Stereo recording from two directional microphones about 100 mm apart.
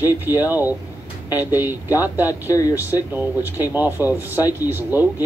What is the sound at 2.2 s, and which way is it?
Speech, 35° left (ahead or behind).